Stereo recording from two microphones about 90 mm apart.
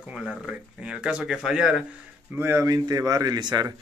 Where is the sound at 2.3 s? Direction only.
25° right (ahead or behind).